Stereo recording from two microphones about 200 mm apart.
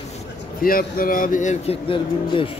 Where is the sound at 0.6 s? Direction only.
45° left (ahead or behind); by 2.5 s 25° left (ahead or behind).